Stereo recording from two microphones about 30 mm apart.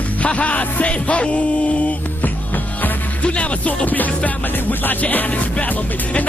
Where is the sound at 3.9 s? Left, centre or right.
Left.